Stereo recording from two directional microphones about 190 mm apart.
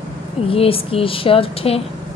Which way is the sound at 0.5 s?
30° left (ahead or behind).